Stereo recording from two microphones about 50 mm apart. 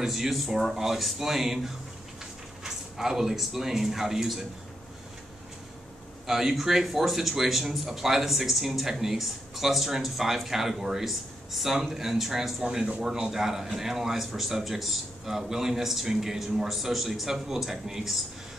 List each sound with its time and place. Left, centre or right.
0.0 s speech: centre
2.6 s speech: centre
6.2 s speech: centre
12.6 s speech: centre
13.0 s a man's voice: centre